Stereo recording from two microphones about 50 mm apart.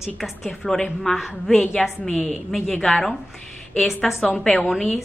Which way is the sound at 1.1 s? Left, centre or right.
Centre.